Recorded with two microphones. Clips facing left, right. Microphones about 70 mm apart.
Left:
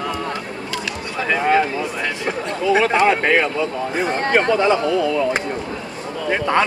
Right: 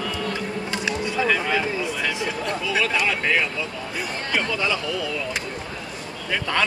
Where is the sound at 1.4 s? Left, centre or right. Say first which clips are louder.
Left 7 dB; left.